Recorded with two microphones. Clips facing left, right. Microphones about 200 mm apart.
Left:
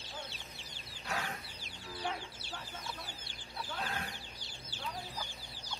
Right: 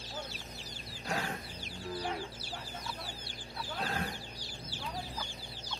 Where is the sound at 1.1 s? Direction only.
30° right (ahead or behind).